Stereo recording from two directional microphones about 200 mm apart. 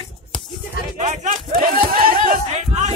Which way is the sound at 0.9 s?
35° right (ahead or behind).